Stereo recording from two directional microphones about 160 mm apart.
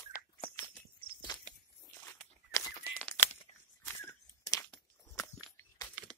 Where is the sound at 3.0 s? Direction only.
10° left (ahead or behind).